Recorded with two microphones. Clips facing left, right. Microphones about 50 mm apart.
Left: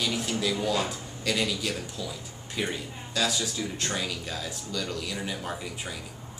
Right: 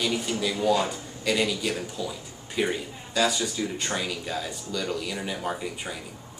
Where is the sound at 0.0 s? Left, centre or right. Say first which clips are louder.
Right 2 dB; centre.